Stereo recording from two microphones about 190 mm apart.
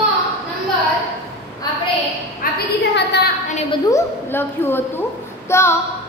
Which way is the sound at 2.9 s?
60° left (ahead or behind).